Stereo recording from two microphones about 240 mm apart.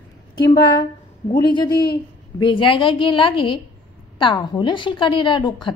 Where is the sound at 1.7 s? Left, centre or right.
Left.